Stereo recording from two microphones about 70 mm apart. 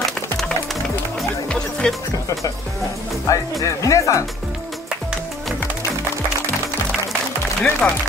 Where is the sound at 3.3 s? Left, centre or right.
Left.